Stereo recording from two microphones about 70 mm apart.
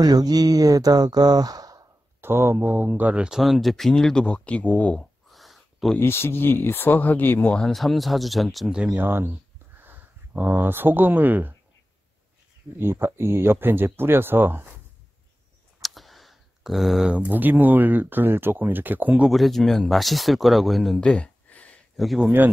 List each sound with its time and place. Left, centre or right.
0.0 s speech: right
2.2 s speech: right
3.3 s speech: centre; by 4.9 s left
5.3 s a sound: centre
5.9 s speech: left
7.5 s speech: centre
8.6 s speech: centre
8.9 s speech: right
12.7 s speech: right
15.8 s computer keyboard: centre
17.1 s speech: right
19.2 s speech: centre
21.0 s a sound: centre
21.9 s speech: centre